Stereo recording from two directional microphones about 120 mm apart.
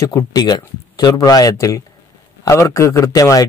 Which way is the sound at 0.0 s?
30° left (ahead or behind).